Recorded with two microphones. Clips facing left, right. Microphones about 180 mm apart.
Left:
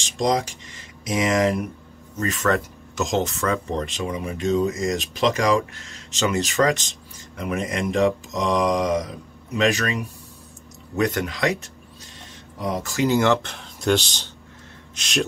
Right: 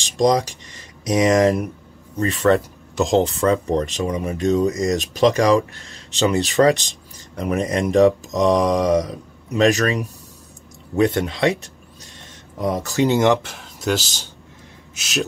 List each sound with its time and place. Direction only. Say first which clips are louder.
0.0 s speech: right 5 dB; 35° right (ahead or behind)
11.0 s speech: right 4 dB; 30° right (ahead or behind)
12.5 s speech: right 4 dB; 45° right (ahead or behind)
12.9 s speech: right 2 dB; 25° right (ahead or behind)
13.4 s a man's voice: even; 5° right (ahead or behind)